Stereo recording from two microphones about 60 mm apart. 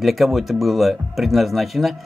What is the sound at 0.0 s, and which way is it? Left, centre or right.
Speech, centre.